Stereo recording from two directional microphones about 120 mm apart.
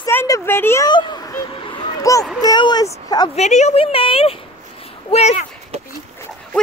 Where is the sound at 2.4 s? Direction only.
35° left (ahead or behind).